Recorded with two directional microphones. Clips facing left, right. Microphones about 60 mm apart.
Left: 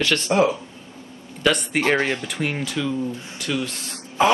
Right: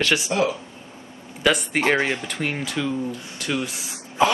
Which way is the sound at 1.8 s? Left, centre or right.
Centre.